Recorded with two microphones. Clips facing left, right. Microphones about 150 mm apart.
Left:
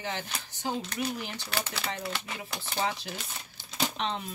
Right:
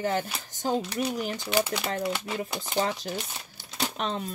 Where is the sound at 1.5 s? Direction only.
15° right (ahead or behind).